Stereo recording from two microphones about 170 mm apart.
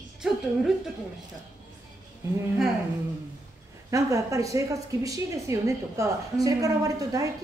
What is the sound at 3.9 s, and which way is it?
A woman's voice, 20° right (ahead or behind).